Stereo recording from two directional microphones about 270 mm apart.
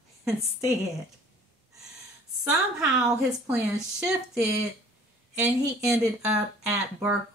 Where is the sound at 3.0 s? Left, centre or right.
Centre.